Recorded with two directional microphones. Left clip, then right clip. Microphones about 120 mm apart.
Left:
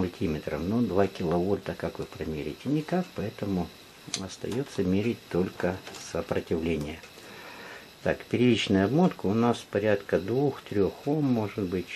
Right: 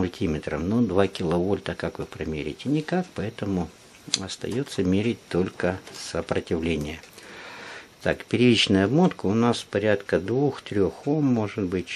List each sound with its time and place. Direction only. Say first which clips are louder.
0.0 s speech: right 3 dB; 35° right (ahead or behind)
8.0 s speech: right 4 dB; 30° right (ahead or behind)